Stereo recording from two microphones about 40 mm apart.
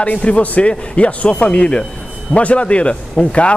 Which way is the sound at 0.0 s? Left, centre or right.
Left.